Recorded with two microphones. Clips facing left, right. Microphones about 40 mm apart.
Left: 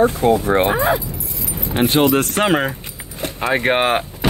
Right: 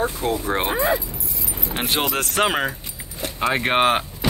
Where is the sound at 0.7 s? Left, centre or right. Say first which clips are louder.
Left 3 dB; left.